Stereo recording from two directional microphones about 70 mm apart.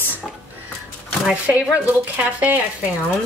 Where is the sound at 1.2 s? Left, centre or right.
Centre.